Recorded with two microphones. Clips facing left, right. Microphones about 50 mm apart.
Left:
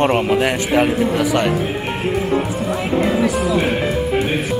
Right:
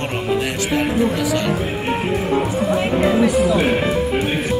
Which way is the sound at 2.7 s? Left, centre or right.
Centre.